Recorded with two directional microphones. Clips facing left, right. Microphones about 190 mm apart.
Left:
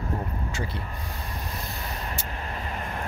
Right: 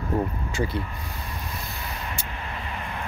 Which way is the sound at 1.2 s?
40° left (ahead or behind).